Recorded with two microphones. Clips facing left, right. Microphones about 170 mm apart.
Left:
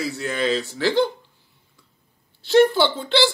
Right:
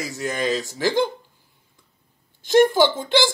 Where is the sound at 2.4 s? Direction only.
15° right (ahead or behind).